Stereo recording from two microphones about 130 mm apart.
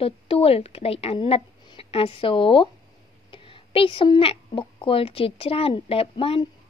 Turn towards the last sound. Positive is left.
turn(degrees=45)  # may be behind; listen again after turning